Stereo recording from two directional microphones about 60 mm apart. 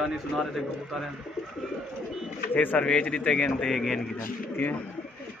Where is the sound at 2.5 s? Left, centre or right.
Left.